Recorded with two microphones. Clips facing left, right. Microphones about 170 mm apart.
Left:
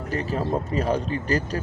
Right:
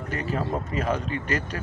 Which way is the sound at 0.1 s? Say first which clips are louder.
Left 3 dB; 35° left (ahead or behind).